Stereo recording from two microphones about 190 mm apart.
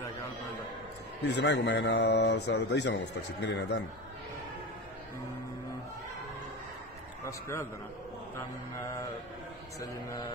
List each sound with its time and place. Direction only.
1.2 s a man's voice: 65° left (ahead or behind)
7.2 s mantra: 15° left (ahead or behind)